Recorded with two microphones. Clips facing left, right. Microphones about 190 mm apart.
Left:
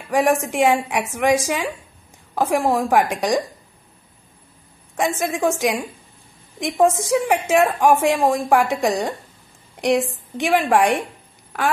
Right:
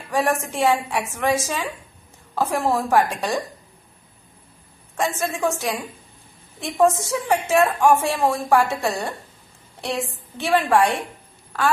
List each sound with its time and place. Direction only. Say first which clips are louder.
0.1 s a woman's voice: left 4 dB; 15° left (ahead or behind)
4.9 s a woman's voice: left 2 dB; 15° left (ahead or behind)
6.8 s a woman's voice: left 2 dB; 15° left (ahead or behind)